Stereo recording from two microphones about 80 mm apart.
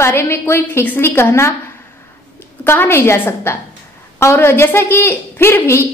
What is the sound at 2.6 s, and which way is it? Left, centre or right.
A woman's voice, left.